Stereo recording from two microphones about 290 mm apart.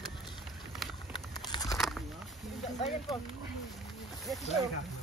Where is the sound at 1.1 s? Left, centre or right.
Centre.